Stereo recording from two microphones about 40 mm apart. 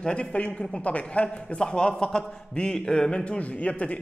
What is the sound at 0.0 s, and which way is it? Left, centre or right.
A man's voice, left.